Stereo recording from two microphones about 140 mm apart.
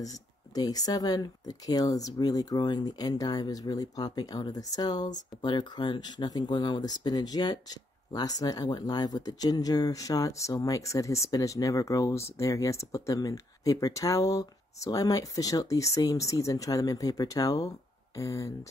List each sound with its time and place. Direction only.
0.6 s speech: 30° left (ahead or behind)